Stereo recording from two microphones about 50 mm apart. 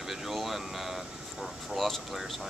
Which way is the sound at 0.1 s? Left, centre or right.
Centre.